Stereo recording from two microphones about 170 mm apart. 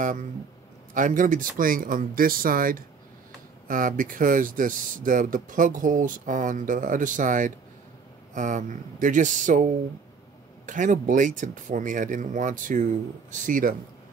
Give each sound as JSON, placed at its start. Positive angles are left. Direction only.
{"t": 0.0, "sound": "speech", "side_deg": -50}
{"t": 10.7, "sound": "speech", "side_deg": -50}